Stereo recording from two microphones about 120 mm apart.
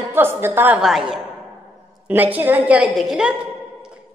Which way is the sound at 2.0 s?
15° right (ahead or behind).